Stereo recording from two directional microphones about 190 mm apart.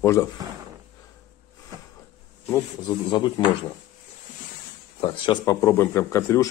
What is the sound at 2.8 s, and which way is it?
Speech, 25° left (ahead or behind).